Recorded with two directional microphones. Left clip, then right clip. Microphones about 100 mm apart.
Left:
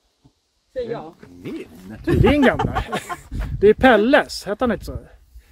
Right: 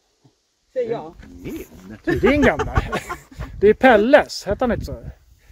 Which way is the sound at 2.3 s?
5° left (ahead or behind).